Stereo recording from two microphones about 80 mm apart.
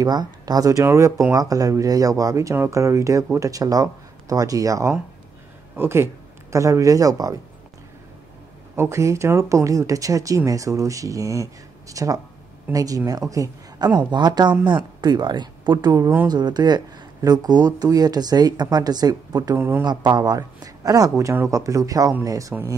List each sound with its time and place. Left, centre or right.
0.0 s speech: right
5.8 s speech: right
6.5 s speech: right
8.7 s a man's voice: right
13.8 s a woman's voice: right